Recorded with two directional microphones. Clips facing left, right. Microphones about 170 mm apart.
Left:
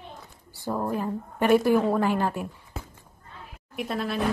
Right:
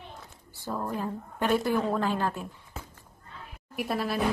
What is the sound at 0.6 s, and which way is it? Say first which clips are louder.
Speech: left 4 dB; 20° left (ahead or behind).